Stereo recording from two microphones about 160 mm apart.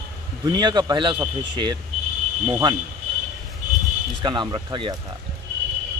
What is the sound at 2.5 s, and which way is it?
Speech, 20° right (ahead or behind).